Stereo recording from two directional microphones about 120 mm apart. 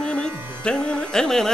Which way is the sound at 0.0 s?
10° left (ahead or behind).